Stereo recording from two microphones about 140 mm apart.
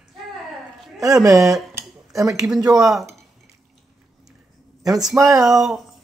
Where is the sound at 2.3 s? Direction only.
5° right (ahead or behind).